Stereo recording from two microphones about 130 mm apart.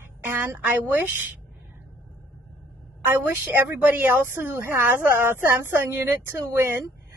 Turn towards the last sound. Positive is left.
turn(degrees=-20)  # may be behind; listen again after turning